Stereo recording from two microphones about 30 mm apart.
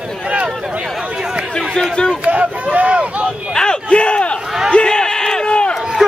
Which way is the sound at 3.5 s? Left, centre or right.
Left.